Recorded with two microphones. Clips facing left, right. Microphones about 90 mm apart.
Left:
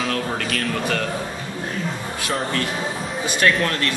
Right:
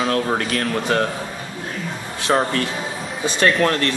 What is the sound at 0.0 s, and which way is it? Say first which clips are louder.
Speech: right 4 dB; 35° right (ahead or behind).